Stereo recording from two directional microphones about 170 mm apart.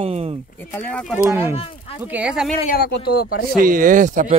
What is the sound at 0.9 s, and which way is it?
Speech, 5° left (ahead or behind).